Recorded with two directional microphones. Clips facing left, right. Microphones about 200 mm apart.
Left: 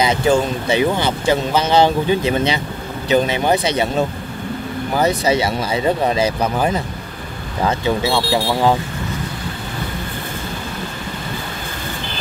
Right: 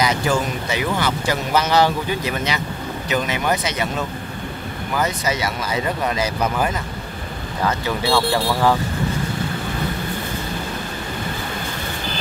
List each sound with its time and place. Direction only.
0.0 s speech: 25° left (ahead or behind)